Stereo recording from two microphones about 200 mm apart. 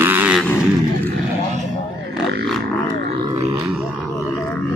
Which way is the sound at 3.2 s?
25° right (ahead or behind).